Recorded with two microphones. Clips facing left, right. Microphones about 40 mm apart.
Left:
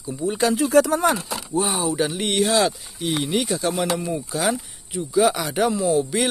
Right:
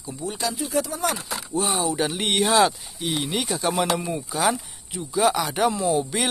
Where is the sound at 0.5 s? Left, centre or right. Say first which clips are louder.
Left 9 dB; left.